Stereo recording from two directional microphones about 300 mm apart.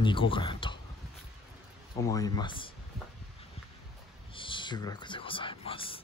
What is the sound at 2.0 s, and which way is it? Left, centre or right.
Speech, centre.